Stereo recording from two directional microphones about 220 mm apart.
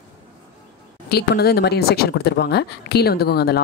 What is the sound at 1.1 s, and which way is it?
Speech, 45° left (ahead or behind).